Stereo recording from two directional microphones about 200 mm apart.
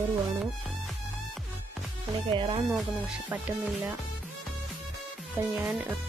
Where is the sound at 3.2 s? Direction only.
5° right (ahead or behind).